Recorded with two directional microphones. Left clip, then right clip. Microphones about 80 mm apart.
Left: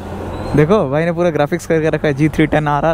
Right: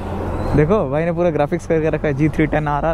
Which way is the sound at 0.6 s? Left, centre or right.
Left.